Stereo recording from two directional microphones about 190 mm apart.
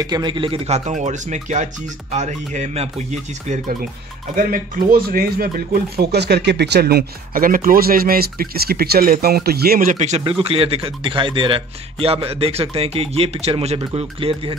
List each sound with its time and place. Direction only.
0.0 s speech: 20° right (ahead or behind); by 3.7 s 35° right (ahead or behind)
4.4 s speech: 50° right (ahead or behind); by 14.6 s 30° right (ahead or behind)